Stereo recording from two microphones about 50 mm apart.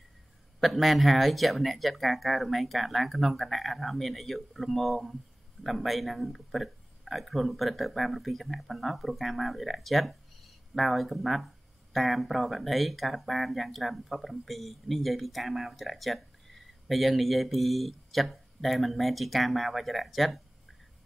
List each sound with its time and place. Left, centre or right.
0.6 s speech: centre